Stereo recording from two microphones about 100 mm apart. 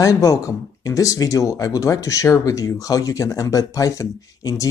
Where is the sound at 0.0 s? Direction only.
35° left (ahead or behind).